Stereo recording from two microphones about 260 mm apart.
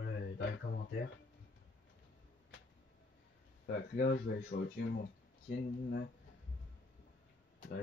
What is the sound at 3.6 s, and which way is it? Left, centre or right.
Speech, left.